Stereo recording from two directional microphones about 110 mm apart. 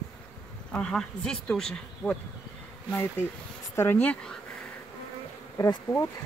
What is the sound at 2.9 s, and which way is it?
Speech, 20° left (ahead or behind).